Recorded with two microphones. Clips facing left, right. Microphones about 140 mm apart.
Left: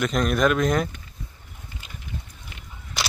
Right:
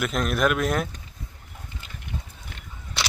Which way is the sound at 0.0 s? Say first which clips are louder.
Left 2 dB; centre (ahead or behind).